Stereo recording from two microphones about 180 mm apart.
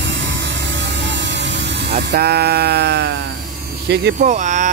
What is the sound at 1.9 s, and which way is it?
Speech, 65° right (ahead or behind).